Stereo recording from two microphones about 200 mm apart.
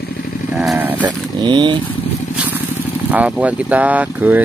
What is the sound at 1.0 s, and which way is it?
Speech, 20° right (ahead or behind).